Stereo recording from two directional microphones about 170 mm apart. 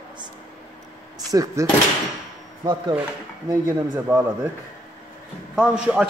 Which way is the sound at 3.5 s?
15° right (ahead or behind).